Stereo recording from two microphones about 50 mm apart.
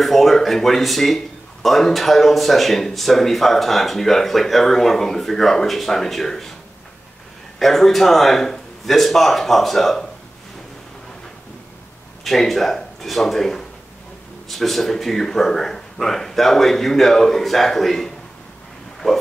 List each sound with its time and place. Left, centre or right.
0.0 s speech: centre
7.5 s speech: centre
12.3 s speech: centre